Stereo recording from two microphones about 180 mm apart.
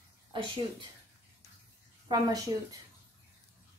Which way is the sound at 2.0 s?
20° right (ahead or behind).